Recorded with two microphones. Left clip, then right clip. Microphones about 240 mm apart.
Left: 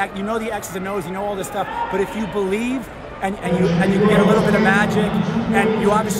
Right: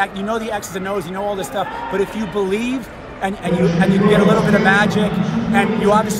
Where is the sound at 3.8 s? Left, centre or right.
Centre.